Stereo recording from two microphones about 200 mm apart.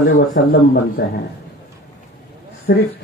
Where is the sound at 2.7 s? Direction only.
55° left (ahead or behind).